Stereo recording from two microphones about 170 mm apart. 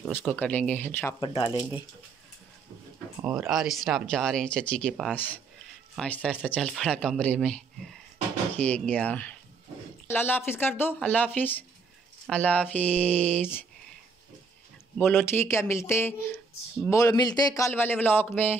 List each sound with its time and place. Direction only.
0.2 s a man's voice: 5° left (ahead or behind)
1.2 s speech: 30° left (ahead or behind)
3.3 s a man's voice: 5° right (ahead or behind)
15.0 s a man's voice: 15° left (ahead or behind)